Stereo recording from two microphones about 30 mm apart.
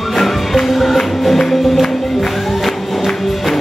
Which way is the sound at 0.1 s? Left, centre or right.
Centre.